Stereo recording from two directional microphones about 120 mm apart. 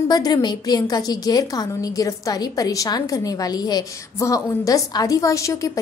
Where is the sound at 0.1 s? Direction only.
35° left (ahead or behind).